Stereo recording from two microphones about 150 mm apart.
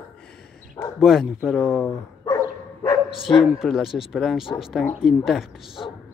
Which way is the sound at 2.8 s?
35° left (ahead or behind).